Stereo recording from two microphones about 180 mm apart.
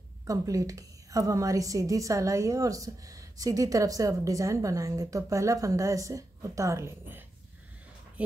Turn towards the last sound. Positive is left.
turn(degrees=-10)  # may be behind; listen again after turning